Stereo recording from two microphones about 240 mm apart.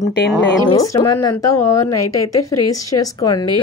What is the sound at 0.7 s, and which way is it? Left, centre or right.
Speech, centre.